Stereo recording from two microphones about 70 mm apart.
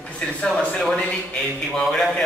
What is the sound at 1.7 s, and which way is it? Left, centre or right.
Speech, centre.